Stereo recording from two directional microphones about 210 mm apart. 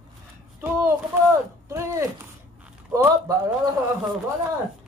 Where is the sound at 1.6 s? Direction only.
15° right (ahead or behind).